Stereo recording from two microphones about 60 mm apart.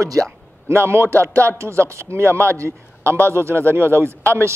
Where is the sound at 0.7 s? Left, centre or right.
Right.